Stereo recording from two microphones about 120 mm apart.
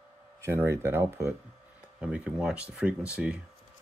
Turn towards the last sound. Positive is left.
turn(degrees=-10)  # may be behind; listen again after turning